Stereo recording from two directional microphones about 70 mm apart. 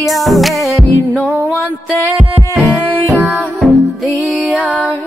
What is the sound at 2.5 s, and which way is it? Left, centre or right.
Music, centre.